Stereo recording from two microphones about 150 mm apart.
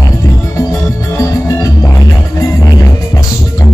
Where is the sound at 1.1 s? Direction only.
20° left (ahead or behind).